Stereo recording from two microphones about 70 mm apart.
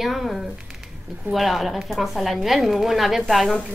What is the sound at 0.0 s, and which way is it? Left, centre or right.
Speech, centre.